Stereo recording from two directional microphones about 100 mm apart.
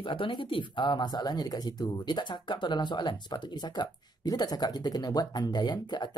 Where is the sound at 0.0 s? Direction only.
60° left (ahead or behind).